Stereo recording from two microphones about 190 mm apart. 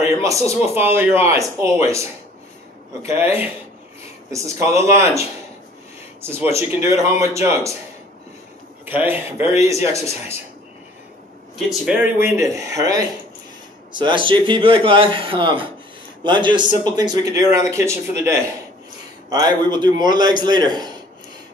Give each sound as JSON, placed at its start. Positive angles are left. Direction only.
{"t": 0.1, "sound": "speech", "side_deg": -15}
{"t": 6.5, "sound": "speech", "side_deg": -15}
{"t": 8.8, "sound": "speech", "side_deg": -10}
{"t": 11.7, "sound": "speech", "side_deg": -5}